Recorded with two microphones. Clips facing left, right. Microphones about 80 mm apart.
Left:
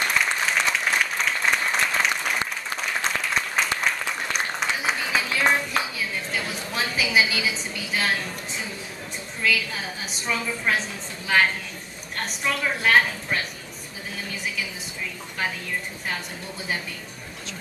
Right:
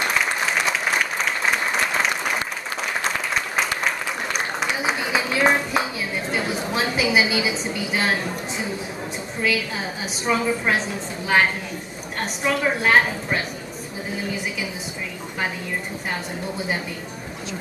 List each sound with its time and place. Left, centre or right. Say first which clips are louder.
0.2 s applause: right 1 dB; centre
3.5 s applause: right 1 dB; centre
6.7 s a sound: right 3 dB; centre
7.6 s a woman's voice: right 4 dB; centre
12.2 s a woman's voice: right 4 dB; centre
14.1 s a sound: right 3 dB; centre